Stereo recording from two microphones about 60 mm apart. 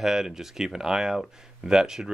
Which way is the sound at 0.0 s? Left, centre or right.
Centre.